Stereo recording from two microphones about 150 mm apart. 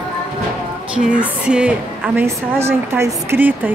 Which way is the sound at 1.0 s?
5° right (ahead or behind).